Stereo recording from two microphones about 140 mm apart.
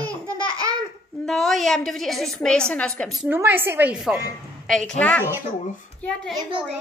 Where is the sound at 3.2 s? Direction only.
15° right (ahead or behind).